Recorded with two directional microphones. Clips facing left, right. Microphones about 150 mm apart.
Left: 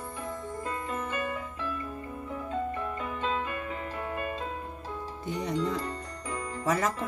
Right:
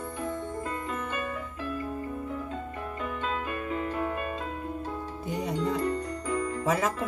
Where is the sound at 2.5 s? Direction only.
35° left (ahead or behind).